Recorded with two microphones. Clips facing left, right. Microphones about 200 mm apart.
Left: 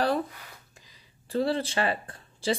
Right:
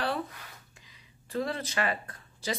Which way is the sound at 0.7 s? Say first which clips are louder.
Left 1 dB; 35° left (ahead or behind).